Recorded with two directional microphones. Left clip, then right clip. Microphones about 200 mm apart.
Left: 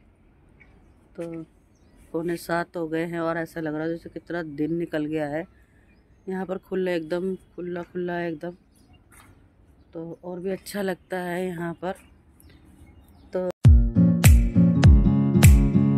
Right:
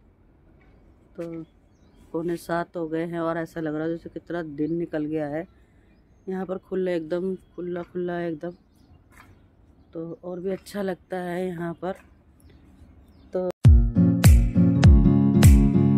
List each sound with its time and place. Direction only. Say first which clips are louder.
2.1 s speech: left 1 dB; centre (ahead or behind)
9.9 s speech: right 1 dB; 5° right (ahead or behind)
13.3 s music: even; 5° right (ahead or behind)